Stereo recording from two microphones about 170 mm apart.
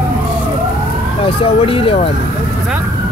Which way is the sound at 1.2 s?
30° left (ahead or behind).